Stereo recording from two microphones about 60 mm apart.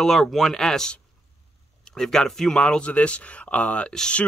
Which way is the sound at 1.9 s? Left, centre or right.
Centre.